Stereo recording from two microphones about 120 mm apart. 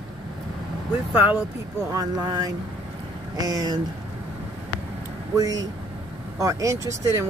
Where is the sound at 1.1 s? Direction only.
15° right (ahead or behind).